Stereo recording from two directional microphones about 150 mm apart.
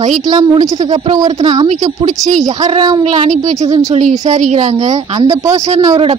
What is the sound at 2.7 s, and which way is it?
Speech, 30° right (ahead or behind).